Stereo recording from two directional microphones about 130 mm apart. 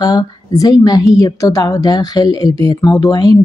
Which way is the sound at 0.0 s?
30° left (ahead or behind).